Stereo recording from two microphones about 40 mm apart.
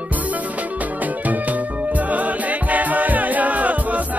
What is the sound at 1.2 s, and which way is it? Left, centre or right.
Music, right.